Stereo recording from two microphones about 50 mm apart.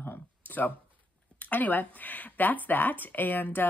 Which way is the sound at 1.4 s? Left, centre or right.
Left.